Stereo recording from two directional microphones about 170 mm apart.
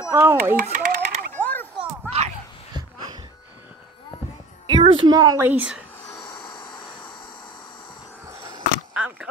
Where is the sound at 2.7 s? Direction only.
25° right (ahead or behind).